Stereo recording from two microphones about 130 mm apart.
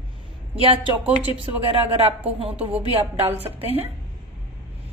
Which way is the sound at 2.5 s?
10° right (ahead or behind).